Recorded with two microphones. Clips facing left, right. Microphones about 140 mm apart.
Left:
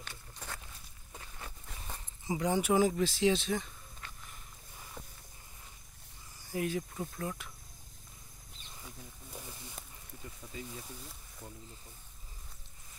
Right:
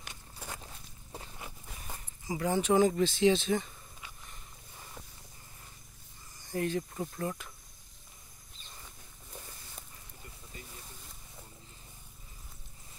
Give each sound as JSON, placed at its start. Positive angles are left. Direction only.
{"t": 0.0, "sound": "walk", "side_deg": -15}
{"t": 0.6, "sound": "walk", "side_deg": -30}
{"t": 1.3, "sound": "a sound", "side_deg": -10}
{"t": 2.2, "sound": "a sound", "side_deg": 15}
{"t": 6.4, "sound": "speech", "side_deg": 5}
{"t": 9.3, "sound": "wild animals", "side_deg": 10}